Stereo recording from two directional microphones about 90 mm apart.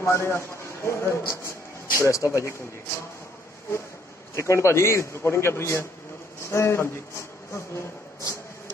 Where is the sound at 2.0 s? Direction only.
35° left (ahead or behind).